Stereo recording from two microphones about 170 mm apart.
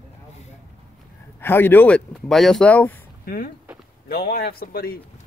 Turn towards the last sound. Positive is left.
turn(degrees=60)  # may be behind; listen again after turning